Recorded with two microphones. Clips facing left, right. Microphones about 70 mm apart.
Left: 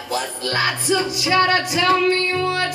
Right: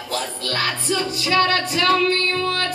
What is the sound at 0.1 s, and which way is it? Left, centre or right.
Music, centre.